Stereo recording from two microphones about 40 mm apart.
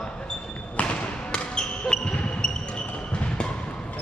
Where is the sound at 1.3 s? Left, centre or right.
Left.